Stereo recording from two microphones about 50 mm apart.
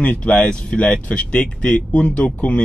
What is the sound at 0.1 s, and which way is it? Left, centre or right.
Speech, left.